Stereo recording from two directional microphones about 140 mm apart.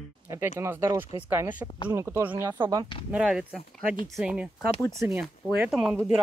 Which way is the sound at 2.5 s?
25° right (ahead or behind).